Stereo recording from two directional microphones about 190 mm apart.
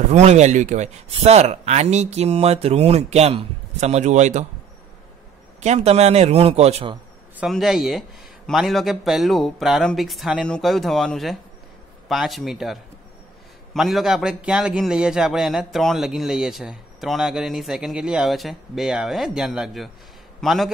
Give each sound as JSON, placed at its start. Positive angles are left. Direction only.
{"t": 0.1, "sound": "speech", "side_deg": -35}
{"t": 5.6, "sound": "speech", "side_deg": -35}
{"t": 7.3, "sound": "a man's voice", "side_deg": 0}
{"t": 13.7, "sound": "a man's voice", "side_deg": 0}